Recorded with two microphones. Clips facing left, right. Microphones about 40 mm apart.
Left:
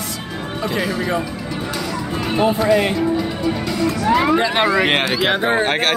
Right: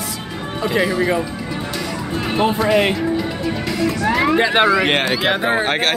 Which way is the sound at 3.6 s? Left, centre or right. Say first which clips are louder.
Right 2 dB; centre.